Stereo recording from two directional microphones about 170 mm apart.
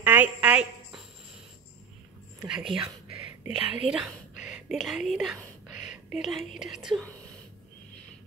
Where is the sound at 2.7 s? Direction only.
30° right (ahead or behind).